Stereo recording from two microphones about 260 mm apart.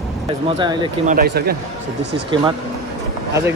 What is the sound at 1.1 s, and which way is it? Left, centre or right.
Speech, right.